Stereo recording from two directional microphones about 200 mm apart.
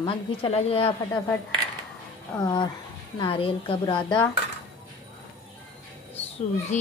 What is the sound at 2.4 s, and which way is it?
A woman's voice, 25° left (ahead or behind).